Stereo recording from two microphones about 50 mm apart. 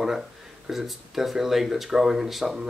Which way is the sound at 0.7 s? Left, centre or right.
Centre.